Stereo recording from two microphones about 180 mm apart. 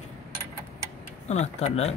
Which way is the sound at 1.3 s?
35° left (ahead or behind).